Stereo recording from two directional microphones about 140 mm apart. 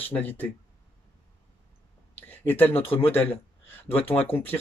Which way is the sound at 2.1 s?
15° left (ahead or behind).